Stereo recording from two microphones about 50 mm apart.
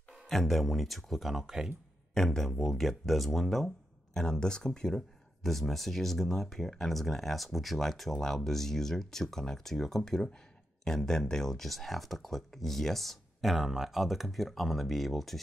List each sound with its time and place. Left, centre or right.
0.3 s speech: centre
2.1 s speech: centre